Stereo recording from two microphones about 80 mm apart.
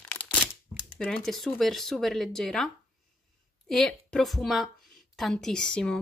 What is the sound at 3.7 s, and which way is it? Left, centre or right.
Speech, centre.